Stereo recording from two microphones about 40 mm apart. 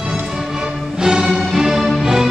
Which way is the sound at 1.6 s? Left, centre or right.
Centre.